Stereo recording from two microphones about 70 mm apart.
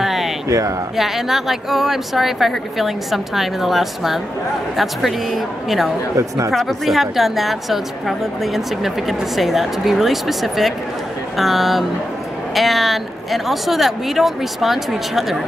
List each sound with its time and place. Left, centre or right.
0.0 s a sound: centre
0.5 s speech: right
0.9 s a woman's voice: centre
6.1 s speech: right
6.5 s a woman's voice: centre